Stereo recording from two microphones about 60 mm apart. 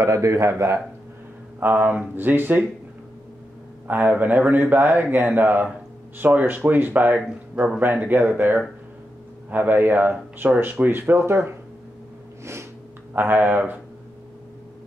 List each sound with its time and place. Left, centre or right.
0.0 s a man's voice: right
1.6 s speech: right
3.8 s a man's voice: right
13.1 s speech: right